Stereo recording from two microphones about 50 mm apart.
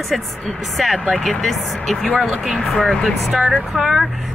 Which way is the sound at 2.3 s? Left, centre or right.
Centre.